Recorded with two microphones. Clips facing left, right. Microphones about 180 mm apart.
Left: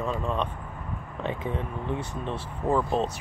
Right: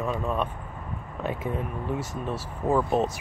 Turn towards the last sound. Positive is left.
turn(degrees=-5)  # may be behind; listen again after turning